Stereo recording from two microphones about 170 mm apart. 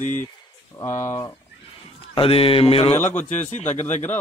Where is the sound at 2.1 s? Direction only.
35° left (ahead or behind).